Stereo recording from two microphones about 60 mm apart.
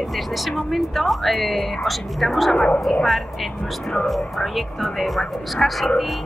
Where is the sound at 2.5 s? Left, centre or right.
Centre.